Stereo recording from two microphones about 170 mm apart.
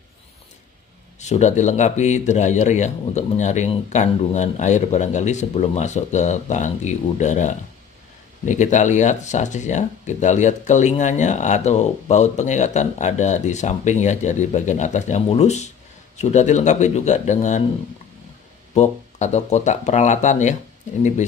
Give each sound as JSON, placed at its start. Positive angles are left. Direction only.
{"t": 1.3, "sound": "speech", "side_deg": 45}
{"t": 18.8, "sound": "speech", "side_deg": 45}